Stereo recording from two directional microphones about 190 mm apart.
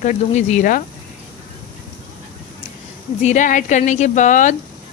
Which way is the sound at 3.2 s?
40° left (ahead or behind).